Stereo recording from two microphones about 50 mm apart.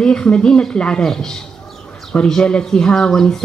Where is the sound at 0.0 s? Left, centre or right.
Centre.